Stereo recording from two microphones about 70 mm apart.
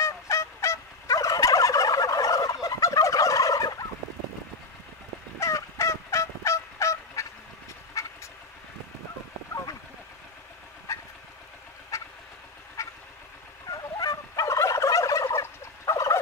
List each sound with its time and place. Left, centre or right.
0.0 s fowl: left
5.4 s fowl: left
8.0 s a sound: left
10.9 s vehicle: left
13.7 s fowl: left
15.8 s gobble: left